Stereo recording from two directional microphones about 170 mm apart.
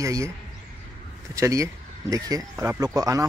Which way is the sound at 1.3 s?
20° right (ahead or behind).